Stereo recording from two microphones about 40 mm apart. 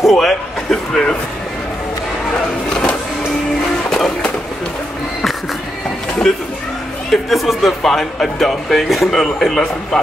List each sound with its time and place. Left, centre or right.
0.0 s a sound: centre
3.9 s music: centre
7.1 s speech: centre
9.1 s speech: centre